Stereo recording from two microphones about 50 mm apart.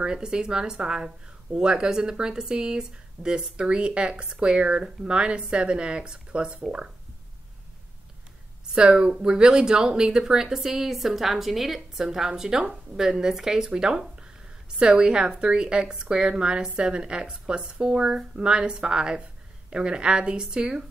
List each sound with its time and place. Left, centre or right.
0.0 s speech: centre
8.7 s a woman's voice: centre